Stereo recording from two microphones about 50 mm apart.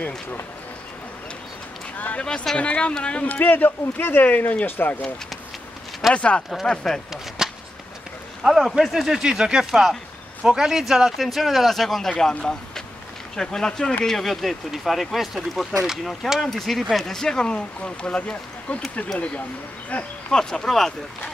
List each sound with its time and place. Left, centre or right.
2.0 s a sound: left
2.5 s speech: left
3.4 s speech: left
6.1 s speech: left
7.1 s a sound: centre
8.4 s speech: centre
9.2 s speech: centre
13.4 s speech: centre
20.2 s speech: centre